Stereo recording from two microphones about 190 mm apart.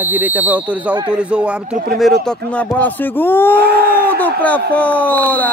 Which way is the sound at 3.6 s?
55° right (ahead or behind).